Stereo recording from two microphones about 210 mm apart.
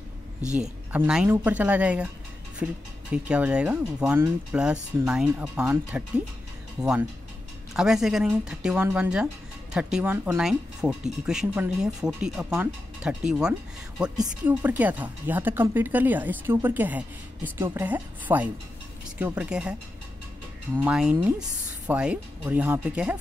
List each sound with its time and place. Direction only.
0.5 s speech: 5° right (ahead or behind)
3.1 s speech: 5° right (ahead or behind)
20.7 s speech: 5° right (ahead or behind)